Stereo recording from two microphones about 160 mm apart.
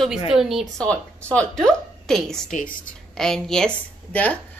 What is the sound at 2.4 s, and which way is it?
Speech, 55° left (ahead or behind).